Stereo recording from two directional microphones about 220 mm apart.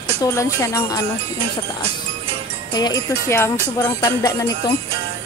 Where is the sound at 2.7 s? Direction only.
20° left (ahead or behind).